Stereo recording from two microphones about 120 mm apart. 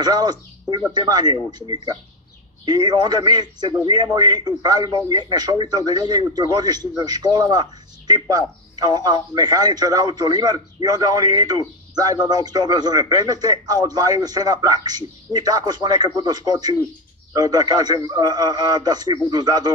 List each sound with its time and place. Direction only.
0.0 s speech: 35° right (ahead or behind)